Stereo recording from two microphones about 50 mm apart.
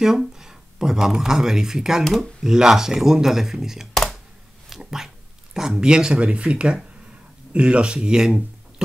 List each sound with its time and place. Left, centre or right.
0.0 s speech: centre
3.9 s a sound: centre
4.6 s speech: centre